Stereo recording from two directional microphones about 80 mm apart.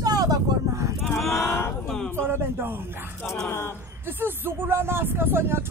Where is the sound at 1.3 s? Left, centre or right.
Left.